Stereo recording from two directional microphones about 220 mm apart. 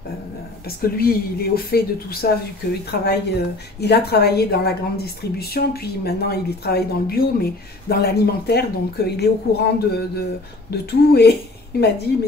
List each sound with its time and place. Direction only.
0.7 s a woman's voice: 45° left (ahead or behind)